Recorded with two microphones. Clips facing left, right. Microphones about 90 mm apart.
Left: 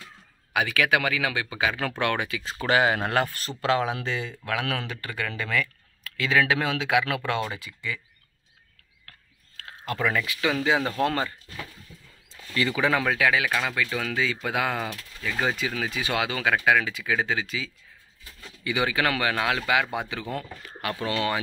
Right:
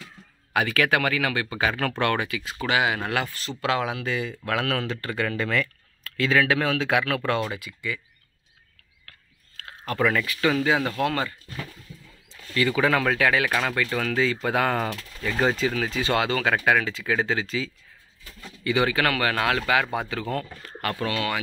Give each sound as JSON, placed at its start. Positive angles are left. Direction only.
{"t": 0.5, "sound": "speech", "side_deg": 10}
{"t": 2.4, "sound": "speech", "side_deg": 35}
{"t": 3.6, "sound": "speech", "side_deg": 30}
{"t": 5.5, "sound": "clicking", "side_deg": 5}
{"t": 6.1, "sound": "speech", "side_deg": 15}
{"t": 7.5, "sound": "speech", "side_deg": 25}
{"t": 9.9, "sound": "speech", "side_deg": 15}
{"t": 12.5, "sound": "speech", "side_deg": 20}
{"t": 14.9, "sound": "speech", "side_deg": -10}
{"t": 15.4, "sound": "speech", "side_deg": 5}
{"t": 18.6, "sound": "speech", "side_deg": 15}
{"t": 21.1, "sound": "speech", "side_deg": 25}